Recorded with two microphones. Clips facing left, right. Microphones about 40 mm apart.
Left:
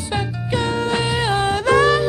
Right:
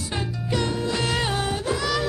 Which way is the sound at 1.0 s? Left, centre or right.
Left.